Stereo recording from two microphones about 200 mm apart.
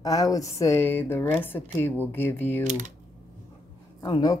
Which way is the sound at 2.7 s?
35° right (ahead or behind).